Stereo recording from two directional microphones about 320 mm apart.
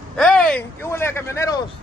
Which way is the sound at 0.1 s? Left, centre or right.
Centre.